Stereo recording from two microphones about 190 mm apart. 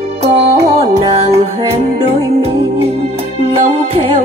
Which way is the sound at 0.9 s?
30° right (ahead or behind).